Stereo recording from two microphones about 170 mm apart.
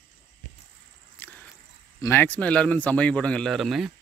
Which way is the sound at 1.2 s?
10° left (ahead or behind).